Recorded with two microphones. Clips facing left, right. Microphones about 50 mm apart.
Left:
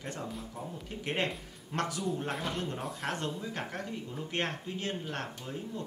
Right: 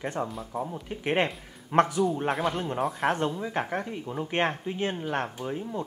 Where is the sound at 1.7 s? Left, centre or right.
Right.